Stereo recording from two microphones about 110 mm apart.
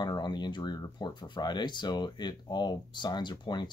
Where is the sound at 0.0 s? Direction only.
40° left (ahead or behind).